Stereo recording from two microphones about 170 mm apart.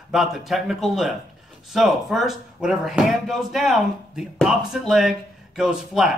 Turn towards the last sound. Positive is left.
turn(degrees=-5)  # may be behind; listen again after turning